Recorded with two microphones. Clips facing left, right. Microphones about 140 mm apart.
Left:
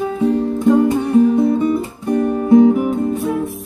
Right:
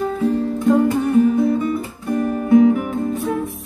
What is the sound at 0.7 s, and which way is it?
Music, 25° left (ahead or behind).